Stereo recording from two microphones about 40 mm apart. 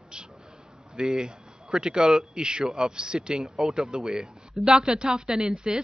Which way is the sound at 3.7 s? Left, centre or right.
Centre.